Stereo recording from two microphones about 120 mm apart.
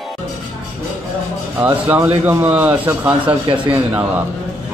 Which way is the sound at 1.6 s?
15° right (ahead or behind).